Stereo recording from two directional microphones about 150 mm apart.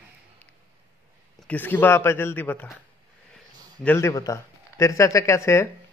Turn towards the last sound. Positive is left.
turn(degrees=20)  # may be behind; listen again after turning